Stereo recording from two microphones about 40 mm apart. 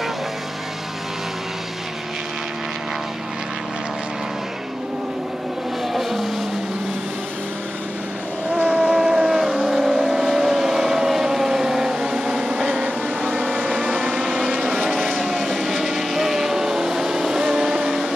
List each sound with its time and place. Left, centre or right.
5.9 s music: centre
8.5 s vehicle: right; by 12.7 s centre
12.7 s vehicle: right
14.1 s vehicle: centre